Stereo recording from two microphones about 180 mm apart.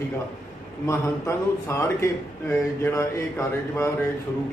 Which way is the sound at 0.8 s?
15° left (ahead or behind).